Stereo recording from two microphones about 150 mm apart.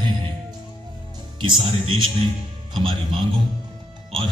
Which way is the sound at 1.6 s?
40° right (ahead or behind).